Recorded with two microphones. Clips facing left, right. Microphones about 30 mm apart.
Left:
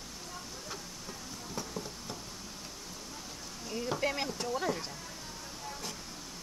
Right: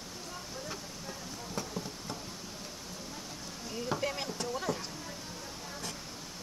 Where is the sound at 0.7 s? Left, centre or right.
Centre.